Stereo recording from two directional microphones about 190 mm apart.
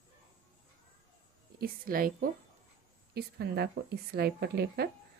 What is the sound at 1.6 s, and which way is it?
A woman's voice, 50° right (ahead or behind).